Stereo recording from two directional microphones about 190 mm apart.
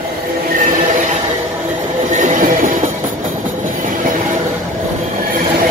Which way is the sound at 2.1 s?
45° right (ahead or behind).